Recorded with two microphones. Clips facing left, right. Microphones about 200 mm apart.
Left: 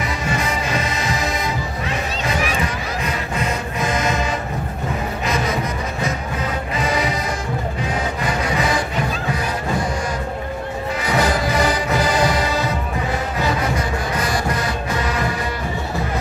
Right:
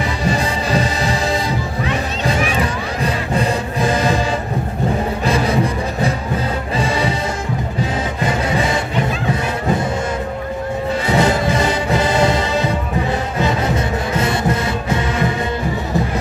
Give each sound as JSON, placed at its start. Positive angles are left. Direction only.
{"t": 0.2, "sound": "music", "side_deg": -35}
{"t": 3.0, "sound": "music", "side_deg": -35}
{"t": 5.2, "sound": "music", "side_deg": -30}
{"t": 11.1, "sound": "music", "side_deg": -25}